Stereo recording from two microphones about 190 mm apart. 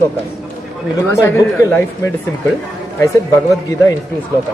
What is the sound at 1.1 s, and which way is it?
Speech, 15° left (ahead or behind).